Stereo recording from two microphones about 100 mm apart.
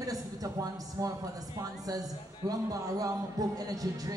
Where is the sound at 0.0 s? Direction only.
35° right (ahead or behind).